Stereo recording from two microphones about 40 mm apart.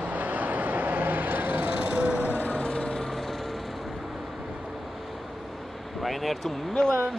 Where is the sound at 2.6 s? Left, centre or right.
Left.